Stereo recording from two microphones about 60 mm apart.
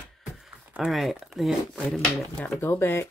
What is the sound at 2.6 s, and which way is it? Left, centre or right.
Speech, left.